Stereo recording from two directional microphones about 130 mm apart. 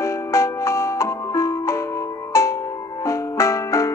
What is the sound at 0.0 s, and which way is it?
Music, 25° left (ahead or behind).